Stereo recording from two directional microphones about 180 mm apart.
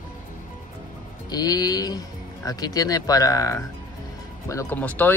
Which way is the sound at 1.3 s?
20° left (ahead or behind).